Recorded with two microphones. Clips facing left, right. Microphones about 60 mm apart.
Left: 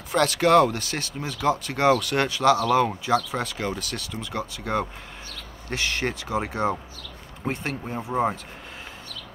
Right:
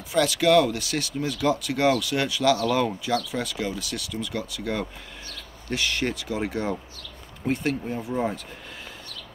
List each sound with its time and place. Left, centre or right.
0.1 s speech: left
2.3 s speech: left